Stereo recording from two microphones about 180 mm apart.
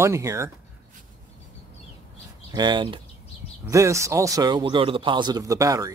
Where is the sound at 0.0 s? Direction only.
15° right (ahead or behind).